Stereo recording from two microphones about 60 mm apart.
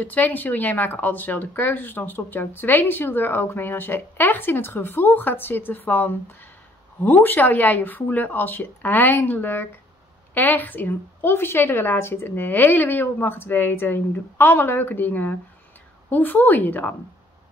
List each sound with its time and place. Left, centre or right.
0.0 s speech: left